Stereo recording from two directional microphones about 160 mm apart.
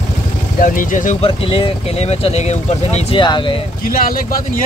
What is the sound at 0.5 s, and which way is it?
Speech, 60° left (ahead or behind).